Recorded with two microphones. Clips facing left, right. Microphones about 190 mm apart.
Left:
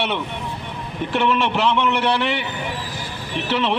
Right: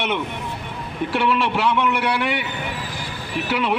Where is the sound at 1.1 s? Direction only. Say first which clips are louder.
Left 1 dB; 10° right (ahead or behind).